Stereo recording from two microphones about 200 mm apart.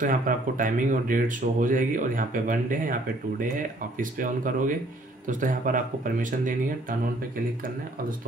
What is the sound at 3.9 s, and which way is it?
Speech, 40° right (ahead or behind).